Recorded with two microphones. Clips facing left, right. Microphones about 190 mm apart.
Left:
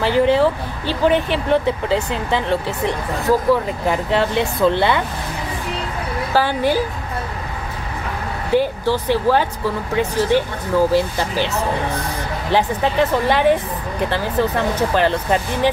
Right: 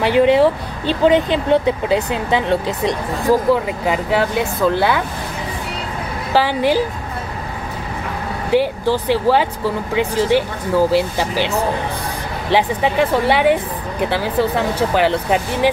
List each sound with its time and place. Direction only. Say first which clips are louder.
0.0 s speech: right 2 dB; 20° right (ahead or behind); by 5.0 s 5° right (ahead or behind)
6.3 s speech: right 2 dB; 15° right (ahead or behind)
8.5 s speech: right 1 dB; 15° right (ahead or behind)
12.5 s speech: right 1 dB; 10° right (ahead or behind)
14.8 s speech: right 2 dB; 10° right (ahead or behind)